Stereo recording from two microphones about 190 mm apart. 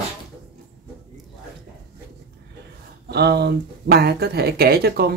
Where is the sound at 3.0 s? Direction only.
60° right (ahead or behind).